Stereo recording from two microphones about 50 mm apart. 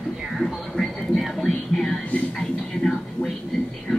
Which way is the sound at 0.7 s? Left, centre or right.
Centre.